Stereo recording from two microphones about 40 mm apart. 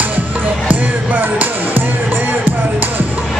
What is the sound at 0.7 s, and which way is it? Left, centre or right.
Music, right.